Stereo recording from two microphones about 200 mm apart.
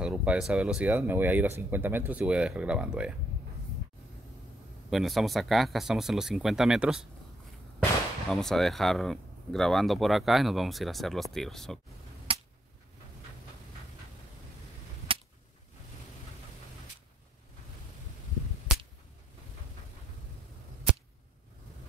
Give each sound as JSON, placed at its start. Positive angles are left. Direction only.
{"t": 0.0, "sound": "speech", "side_deg": -5}
{"t": 4.8, "sound": "speech", "side_deg": 0}
{"t": 8.3, "sound": "speech", "side_deg": 0}
{"t": 12.3, "sound": "a sound", "side_deg": -25}
{"t": 15.1, "sound": "cap gun", "side_deg": -25}